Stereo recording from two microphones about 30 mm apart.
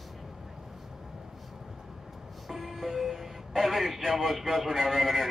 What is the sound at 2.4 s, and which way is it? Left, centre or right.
A man's voice, centre.